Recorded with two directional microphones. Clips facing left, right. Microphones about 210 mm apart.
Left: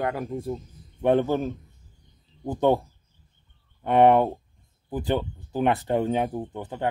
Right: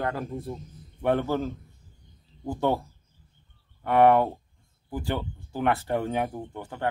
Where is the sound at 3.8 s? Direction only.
20° left (ahead or behind).